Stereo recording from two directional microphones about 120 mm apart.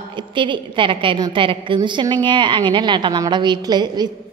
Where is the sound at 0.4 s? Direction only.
45° right (ahead or behind).